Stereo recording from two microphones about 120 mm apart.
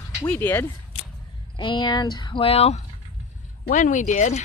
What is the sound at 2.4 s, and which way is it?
Speech, 60° left (ahead or behind).